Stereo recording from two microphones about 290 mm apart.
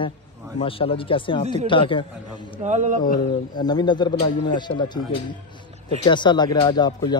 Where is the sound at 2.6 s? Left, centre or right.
Right.